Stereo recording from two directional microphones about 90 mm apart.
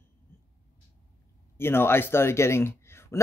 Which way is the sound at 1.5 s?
25° left (ahead or behind).